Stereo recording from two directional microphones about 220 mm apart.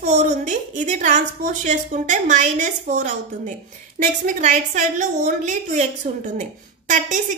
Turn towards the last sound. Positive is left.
turn(degrees=-35)  # may be behind; listen again after turning